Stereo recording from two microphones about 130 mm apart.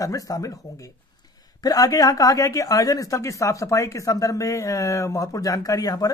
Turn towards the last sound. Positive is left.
turn(degrees=30)  # may be behind; listen again after turning